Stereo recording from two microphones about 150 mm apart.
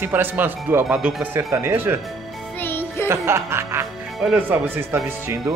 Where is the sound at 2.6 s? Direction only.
15° left (ahead or behind).